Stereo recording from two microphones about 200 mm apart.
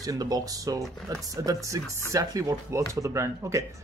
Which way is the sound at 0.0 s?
20° right (ahead or behind).